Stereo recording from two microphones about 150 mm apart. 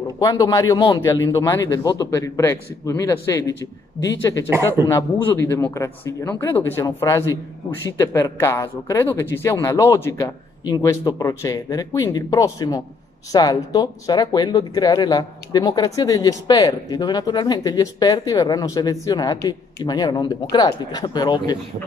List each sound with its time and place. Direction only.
0.2 s a man's voice: 25° left (ahead or behind)
4.5 s speech: 15° right (ahead or behind)
4.9 s speech: 15° left (ahead or behind)